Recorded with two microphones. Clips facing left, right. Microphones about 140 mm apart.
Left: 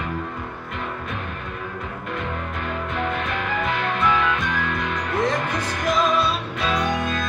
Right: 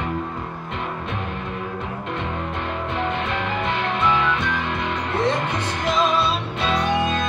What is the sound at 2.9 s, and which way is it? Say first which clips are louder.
Music: right 1 dB; 25° right (ahead or behind).